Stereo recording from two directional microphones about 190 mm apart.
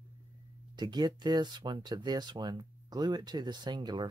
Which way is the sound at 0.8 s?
20° right (ahead or behind).